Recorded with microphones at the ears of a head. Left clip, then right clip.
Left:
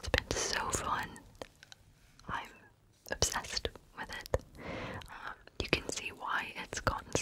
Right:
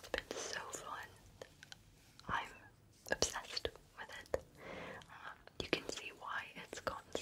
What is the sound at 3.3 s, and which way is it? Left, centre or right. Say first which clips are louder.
Whispering: left 6 dB; left.